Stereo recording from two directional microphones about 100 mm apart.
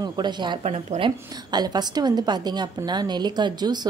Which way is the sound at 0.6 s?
90° right.